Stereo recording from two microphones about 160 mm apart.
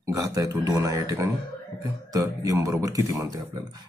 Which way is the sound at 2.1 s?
20° right (ahead or behind).